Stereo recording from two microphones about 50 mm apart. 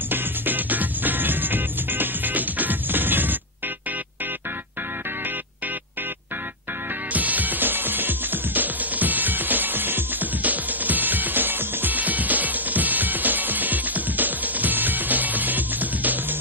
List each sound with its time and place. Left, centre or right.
0.1 s music: right
7.1 s music: right